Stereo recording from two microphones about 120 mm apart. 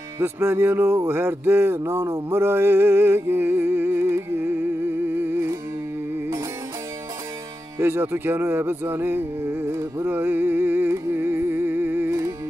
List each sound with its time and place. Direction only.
0.2 s music: 20° right (ahead or behind)
7.8 s music: 20° right (ahead or behind)